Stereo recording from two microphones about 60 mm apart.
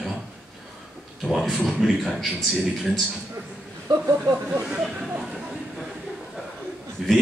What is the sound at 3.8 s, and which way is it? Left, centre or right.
Speech, right.